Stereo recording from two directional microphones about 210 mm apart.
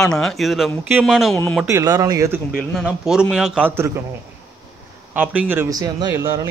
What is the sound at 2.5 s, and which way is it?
A man's voice, centre (ahead or behind).